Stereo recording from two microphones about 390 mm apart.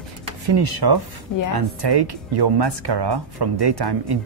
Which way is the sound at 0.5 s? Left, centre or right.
Right.